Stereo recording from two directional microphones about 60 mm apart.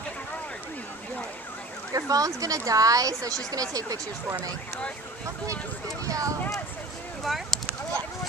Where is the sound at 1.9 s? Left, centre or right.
Right.